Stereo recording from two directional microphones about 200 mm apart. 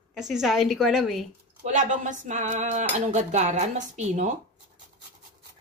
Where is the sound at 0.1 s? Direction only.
Centre (ahead or behind).